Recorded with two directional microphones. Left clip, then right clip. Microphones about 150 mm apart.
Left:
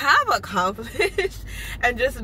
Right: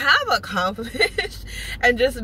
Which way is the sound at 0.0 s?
Centre (ahead or behind).